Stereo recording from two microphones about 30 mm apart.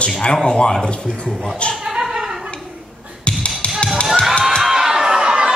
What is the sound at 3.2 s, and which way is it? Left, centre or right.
Tap, left.